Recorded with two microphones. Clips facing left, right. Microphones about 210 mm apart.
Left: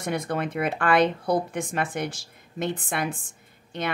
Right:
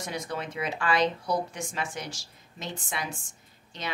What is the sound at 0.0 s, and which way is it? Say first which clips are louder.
Speech: left 7 dB; 55° left (ahead or behind).